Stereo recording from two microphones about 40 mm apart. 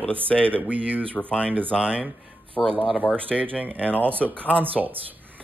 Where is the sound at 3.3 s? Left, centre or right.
Right.